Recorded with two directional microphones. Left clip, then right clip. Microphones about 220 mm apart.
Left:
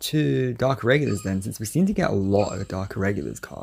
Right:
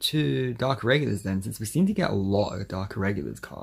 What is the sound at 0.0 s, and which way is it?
Speech, 15° left (ahead or behind).